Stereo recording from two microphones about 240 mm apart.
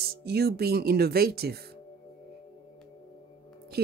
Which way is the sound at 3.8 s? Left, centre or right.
Right.